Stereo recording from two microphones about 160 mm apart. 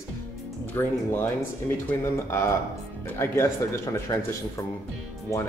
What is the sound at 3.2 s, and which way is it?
Speech, 15° left (ahead or behind).